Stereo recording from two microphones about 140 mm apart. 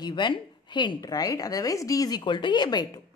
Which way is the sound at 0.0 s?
35° left (ahead or behind).